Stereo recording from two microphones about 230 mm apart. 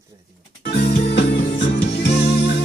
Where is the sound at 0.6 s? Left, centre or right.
Left.